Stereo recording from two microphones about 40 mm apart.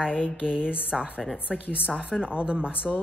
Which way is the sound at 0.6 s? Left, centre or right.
Left.